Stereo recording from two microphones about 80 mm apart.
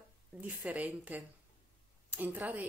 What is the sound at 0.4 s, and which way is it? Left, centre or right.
Speech, centre.